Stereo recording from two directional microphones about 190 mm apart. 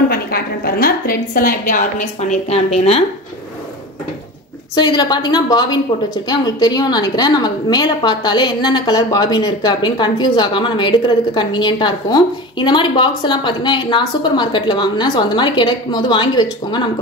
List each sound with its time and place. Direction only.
0.1 s a woman's voice: 55° left (ahead or behind); by 3.0 s 35° left (ahead or behind)
4.7 s a woman's voice: 20° left (ahead or behind)